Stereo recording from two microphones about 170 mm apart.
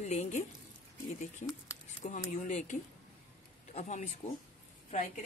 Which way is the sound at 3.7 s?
45° left (ahead or behind).